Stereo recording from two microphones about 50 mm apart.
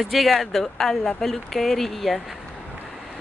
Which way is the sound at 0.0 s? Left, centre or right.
Centre.